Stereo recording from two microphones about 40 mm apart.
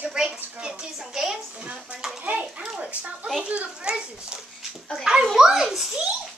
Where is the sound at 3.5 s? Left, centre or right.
Right.